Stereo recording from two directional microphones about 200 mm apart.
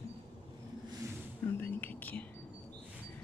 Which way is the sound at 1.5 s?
10° left (ahead or behind).